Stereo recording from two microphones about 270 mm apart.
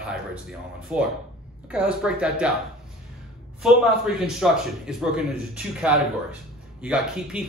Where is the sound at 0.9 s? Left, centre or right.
Centre.